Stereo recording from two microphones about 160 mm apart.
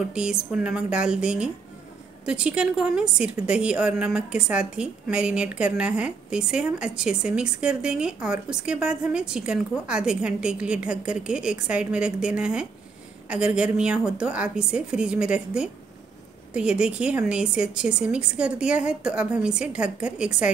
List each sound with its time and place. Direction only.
0.1 s a woman's voice: 5° right (ahead or behind)